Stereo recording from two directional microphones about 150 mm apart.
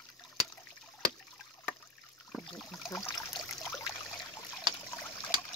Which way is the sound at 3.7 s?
20° left (ahead or behind).